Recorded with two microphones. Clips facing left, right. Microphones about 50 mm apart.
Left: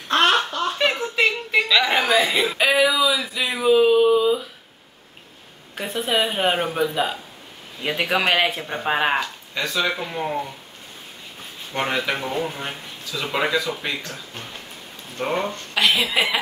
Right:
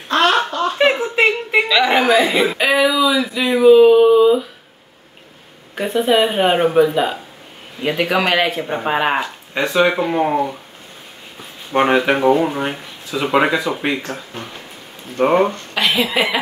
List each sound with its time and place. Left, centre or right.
0.3 s a sound: right
1.7 s a sound: centre
2.0 s a woman's voice: centre
2.5 s a sound: centre
5.8 s a woman's voice: centre
8.5 s speech: centre
8.8 s a woman's voice: centre
9.2 s speech: right
11.7 s speech: right
15.7 s a woman's voice: centre